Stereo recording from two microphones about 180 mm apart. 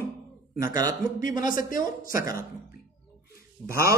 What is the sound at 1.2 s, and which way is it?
Speech, 45° left (ahead or behind).